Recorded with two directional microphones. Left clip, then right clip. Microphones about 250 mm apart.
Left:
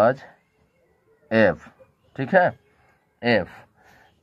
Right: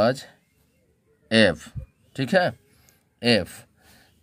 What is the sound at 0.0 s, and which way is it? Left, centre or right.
Speech, right.